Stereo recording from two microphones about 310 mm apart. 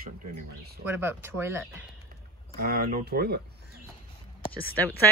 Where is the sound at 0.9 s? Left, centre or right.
Centre.